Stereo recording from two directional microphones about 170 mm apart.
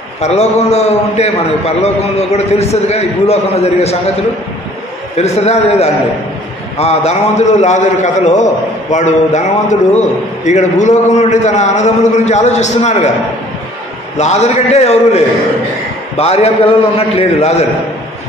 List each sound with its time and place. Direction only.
0.2 s a man's voice: 40° left (ahead or behind)
5.1 s a man's voice: 40° left (ahead or behind)
14.1 s a man's voice: 40° left (ahead or behind)